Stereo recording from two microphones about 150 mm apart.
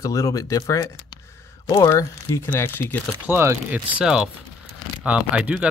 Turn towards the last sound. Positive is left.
turn(degrees=-10)  # may be behind; listen again after turning